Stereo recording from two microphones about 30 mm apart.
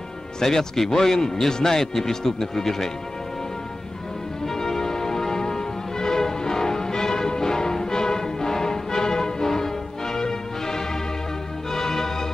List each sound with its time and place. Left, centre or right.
0.4 s speech: centre
4.5 s music: centre